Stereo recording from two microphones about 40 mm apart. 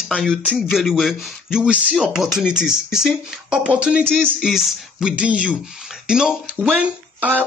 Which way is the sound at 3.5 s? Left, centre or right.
Right.